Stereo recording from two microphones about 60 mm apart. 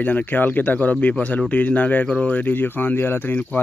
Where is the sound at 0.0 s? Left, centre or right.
Left.